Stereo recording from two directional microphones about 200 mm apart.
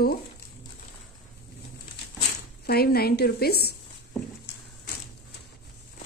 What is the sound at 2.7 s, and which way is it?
Speech, 50° left (ahead or behind).